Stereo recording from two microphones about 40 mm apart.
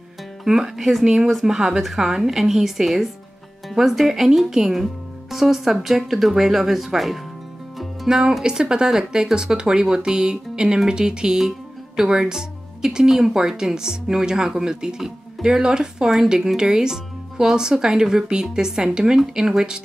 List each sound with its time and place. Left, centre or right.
0.5 s speech: centre
8.1 s speech: centre